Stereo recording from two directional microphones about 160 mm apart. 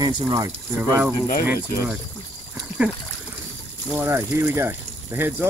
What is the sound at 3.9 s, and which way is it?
Speech, 15° right (ahead or behind).